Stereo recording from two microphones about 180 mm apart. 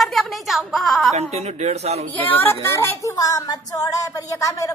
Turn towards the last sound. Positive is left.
turn(degrees=20)  # may be behind; listen again after turning